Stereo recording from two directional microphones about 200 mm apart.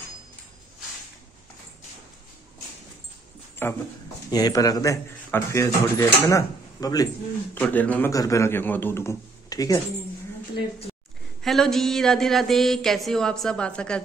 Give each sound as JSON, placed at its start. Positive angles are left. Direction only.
{"t": 3.6, "sound": "speech", "side_deg": 10}
{"t": 7.5, "sound": "speech", "side_deg": 5}
{"t": 11.4, "sound": "speech", "side_deg": 0}